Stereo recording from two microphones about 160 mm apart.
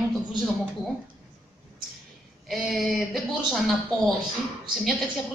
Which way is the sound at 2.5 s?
Centre (ahead or behind).